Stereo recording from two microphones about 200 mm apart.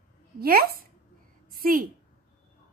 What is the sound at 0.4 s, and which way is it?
A woman's voice, 50° right (ahead or behind).